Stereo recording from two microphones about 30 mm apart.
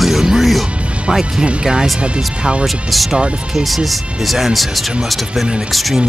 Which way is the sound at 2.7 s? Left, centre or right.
Centre.